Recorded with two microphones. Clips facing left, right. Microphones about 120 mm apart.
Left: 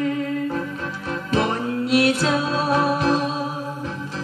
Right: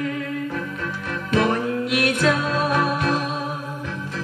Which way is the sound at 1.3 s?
30° left (ahead or behind).